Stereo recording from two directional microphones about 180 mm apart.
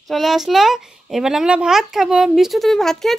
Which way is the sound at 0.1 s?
Centre (ahead or behind).